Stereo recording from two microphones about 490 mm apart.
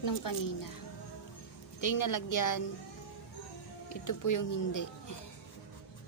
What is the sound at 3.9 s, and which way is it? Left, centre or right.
Speech, left.